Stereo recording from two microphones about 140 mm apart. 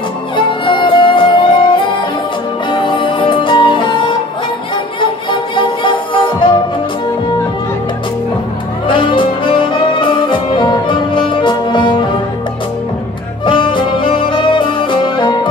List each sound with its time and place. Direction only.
0.5 s music: 35° left (ahead or behind)
5.0 s music: 35° left (ahead or behind)
8.8 s music: 35° left (ahead or behind)
13.5 s music: 35° left (ahead or behind)